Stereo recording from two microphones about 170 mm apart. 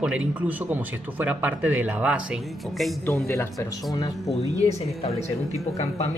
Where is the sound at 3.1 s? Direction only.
15° left (ahead or behind).